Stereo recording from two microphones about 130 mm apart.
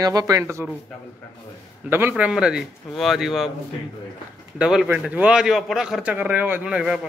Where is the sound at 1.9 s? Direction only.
15° right (ahead or behind).